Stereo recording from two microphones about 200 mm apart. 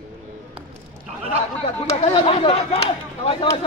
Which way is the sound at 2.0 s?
30° left (ahead or behind).